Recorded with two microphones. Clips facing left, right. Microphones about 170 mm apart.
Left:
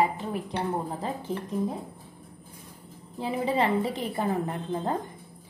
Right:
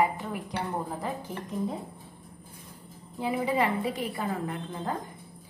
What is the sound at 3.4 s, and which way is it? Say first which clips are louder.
Speech: left 3 dB; 25° left (ahead or behind).